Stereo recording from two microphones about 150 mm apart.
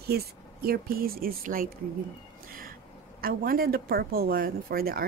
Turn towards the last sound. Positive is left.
turn(degrees=-80)